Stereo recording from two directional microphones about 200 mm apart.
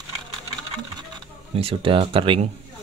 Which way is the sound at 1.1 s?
25° right (ahead or behind).